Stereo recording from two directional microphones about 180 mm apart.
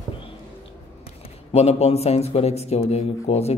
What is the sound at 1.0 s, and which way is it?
A man's voice, 35° left (ahead or behind).